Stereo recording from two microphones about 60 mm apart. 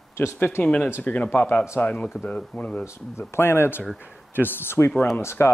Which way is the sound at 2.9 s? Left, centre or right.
Left.